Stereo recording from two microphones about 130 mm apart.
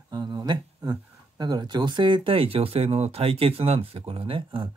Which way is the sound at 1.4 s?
30° right (ahead or behind).